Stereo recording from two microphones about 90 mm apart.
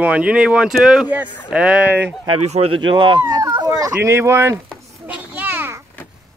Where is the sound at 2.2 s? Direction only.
70° right (ahead or behind).